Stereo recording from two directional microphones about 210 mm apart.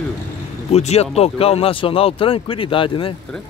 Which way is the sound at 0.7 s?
30° left (ahead or behind).